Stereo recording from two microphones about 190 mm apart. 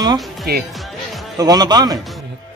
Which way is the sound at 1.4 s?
20° right (ahead or behind).